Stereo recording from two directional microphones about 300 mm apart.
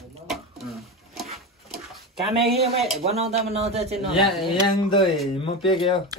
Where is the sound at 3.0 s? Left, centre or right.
Right.